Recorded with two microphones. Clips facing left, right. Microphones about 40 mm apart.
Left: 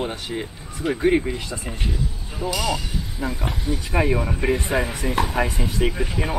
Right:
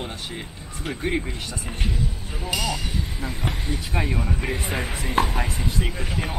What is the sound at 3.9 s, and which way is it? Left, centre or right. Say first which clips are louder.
Speech: left 6 dB; centre.